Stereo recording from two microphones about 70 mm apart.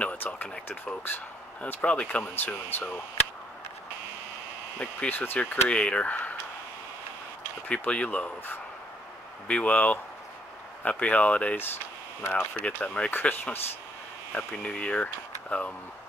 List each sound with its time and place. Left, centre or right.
0.0 s speech: centre
2.3 s speech: left
4.7 s speech: left
7.6 s speech: centre
12.2 s speech: left
13.3 s speech: left
14.3 s speech: centre